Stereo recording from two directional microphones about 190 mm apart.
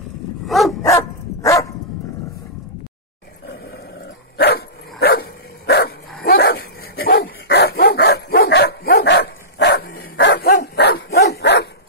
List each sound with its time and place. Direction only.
0.5 s dog: centre (ahead or behind)
0.8 s dog: 15° left (ahead or behind)
3.4 s dog: 60° left (ahead or behind)